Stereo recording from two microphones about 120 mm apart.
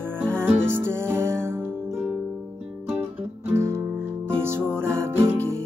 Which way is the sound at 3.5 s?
20° right (ahead or behind).